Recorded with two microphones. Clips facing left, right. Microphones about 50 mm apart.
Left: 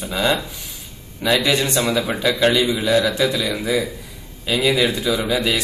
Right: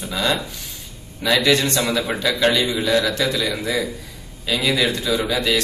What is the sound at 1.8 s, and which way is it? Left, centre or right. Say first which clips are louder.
Speech: left 2 dB; centre.